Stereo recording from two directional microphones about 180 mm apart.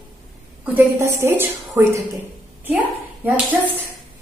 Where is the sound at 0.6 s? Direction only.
10° right (ahead or behind).